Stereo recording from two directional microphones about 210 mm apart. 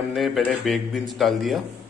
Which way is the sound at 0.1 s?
Centre (ahead or behind).